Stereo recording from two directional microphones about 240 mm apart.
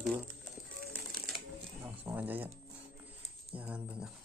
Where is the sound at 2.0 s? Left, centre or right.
Centre.